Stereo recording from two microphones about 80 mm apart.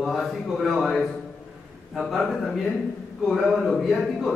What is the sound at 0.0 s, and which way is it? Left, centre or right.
A man's voice, centre.